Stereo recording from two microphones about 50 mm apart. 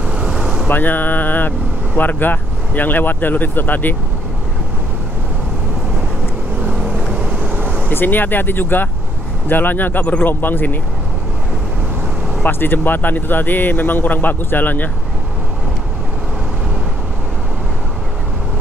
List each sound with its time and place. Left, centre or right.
0.2 s vehicle: centre
0.7 s speech: left
7.5 s vehicle: right
7.9 s speech: left
12.4 s speech: left